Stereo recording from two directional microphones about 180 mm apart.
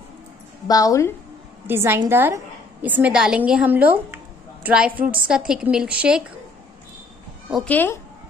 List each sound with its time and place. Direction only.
0.7 s a woman's voice: 20° left (ahead or behind)
1.7 s a woman's voice: 10° right (ahead or behind)
7.6 s speech: 10° left (ahead or behind)